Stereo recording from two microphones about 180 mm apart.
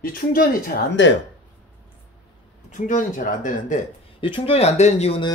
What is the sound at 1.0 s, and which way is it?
Speech, 90° left.